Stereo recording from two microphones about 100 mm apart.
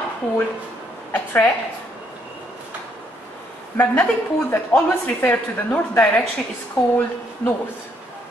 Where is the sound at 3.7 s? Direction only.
15° left (ahead or behind).